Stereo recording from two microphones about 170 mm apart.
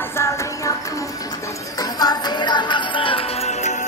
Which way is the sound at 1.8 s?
25° left (ahead or behind).